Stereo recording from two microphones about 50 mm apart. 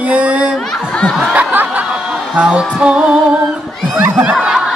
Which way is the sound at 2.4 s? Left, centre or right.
Right.